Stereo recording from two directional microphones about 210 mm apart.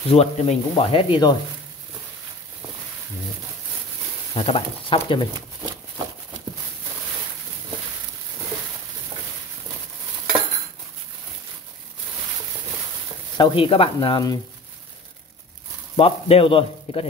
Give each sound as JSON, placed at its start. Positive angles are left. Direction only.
{"t": 0.1, "sound": "speech", "side_deg": 30}
{"t": 4.4, "sound": "speech", "side_deg": 25}
{"t": 13.4, "sound": "speech", "side_deg": 25}
{"t": 16.0, "sound": "speech", "side_deg": 25}